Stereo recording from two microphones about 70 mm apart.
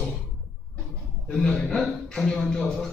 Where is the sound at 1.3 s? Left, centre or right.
Centre.